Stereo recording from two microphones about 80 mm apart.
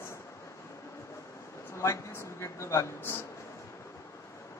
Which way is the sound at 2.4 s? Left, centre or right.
Left.